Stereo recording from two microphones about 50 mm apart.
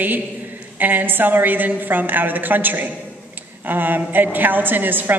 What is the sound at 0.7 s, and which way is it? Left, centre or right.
A woman's voice, right.